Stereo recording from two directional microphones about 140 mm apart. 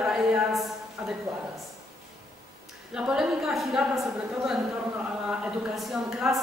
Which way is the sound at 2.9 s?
5° right (ahead or behind).